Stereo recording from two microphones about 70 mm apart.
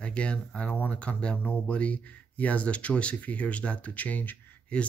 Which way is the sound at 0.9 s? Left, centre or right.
Centre.